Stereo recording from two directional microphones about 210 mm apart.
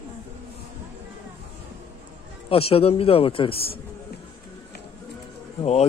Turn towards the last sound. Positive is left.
turn(degrees=30)  # may be behind; listen again after turning